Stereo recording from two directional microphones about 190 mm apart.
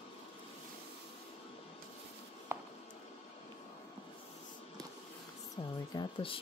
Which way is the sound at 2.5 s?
10° right (ahead or behind).